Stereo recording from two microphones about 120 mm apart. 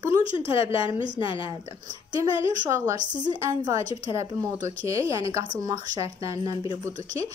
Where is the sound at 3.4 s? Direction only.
35° right (ahead or behind).